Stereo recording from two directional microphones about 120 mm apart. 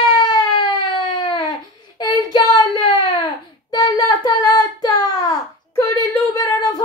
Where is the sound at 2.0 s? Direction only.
35° left (ahead or behind).